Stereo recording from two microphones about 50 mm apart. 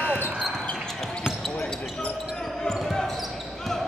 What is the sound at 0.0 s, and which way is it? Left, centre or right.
Basketball bounce, left.